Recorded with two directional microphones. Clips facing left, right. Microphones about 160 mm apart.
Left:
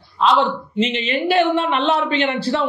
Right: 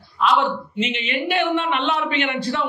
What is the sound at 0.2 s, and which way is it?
A woman's voice, 30° left (ahead or behind).